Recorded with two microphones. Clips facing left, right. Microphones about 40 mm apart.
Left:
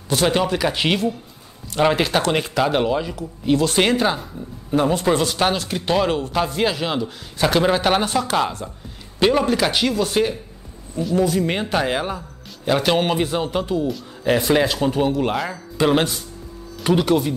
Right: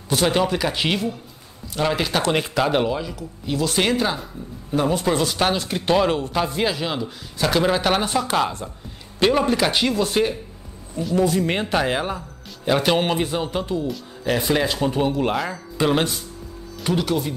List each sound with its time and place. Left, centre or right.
0.1 s speech: centre
1.8 s speech: centre
2.3 s speech: centre
9.7 s speech: centre
10.0 s speech: centre
14.9 s speech: centre